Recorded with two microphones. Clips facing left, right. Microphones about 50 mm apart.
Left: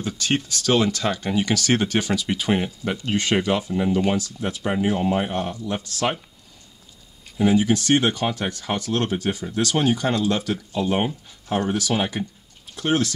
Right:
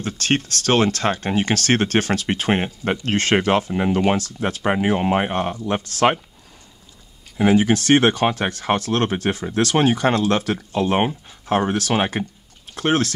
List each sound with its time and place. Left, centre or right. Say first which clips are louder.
0.0 s speech: right 2 dB; right
3.4 s speech: right 3 dB; right
7.3 s speech: right 2 dB; right
12.7 s speech: right 2 dB; right